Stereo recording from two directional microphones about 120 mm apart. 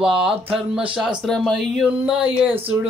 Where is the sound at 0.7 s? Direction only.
5° right (ahead or behind).